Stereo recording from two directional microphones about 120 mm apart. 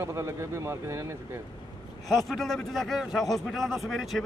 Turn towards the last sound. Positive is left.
turn(degrees=0)  # may be behind; listen again after turning